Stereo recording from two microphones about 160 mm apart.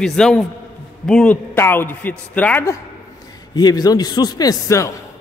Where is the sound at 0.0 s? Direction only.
5° left (ahead or behind).